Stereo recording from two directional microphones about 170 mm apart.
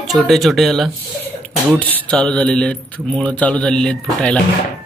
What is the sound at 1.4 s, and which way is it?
Beatboxing, 5° left (ahead or behind).